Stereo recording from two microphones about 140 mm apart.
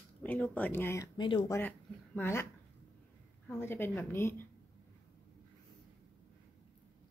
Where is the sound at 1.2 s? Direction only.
35° left (ahead or behind).